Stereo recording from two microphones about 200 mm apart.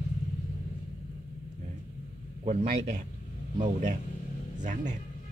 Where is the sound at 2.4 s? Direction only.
35° right (ahead or behind).